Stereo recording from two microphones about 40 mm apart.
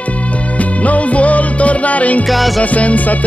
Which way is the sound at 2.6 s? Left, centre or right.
Left.